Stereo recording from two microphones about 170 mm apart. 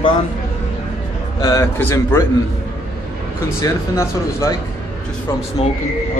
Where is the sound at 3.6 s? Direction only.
15° left (ahead or behind).